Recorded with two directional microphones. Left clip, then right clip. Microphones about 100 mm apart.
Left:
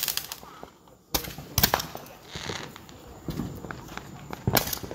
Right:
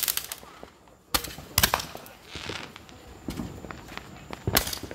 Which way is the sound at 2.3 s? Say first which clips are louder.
Left 1 dB; 5° right (ahead or behind).